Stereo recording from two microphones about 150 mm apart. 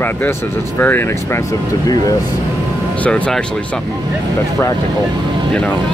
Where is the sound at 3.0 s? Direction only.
5° left (ahead or behind).